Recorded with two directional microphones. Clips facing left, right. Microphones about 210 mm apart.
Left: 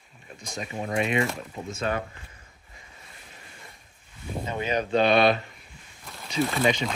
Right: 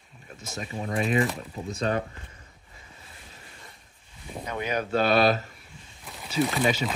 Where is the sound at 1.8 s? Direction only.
35° right (ahead or behind).